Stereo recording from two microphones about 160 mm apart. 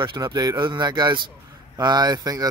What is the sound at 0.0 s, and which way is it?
Speech, 30° right (ahead or behind).